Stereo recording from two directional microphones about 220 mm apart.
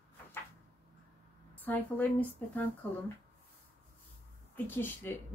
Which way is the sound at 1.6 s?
10° left (ahead or behind).